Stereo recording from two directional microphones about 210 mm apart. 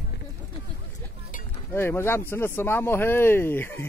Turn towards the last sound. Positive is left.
turn(degrees=10)  # may be behind; listen again after turning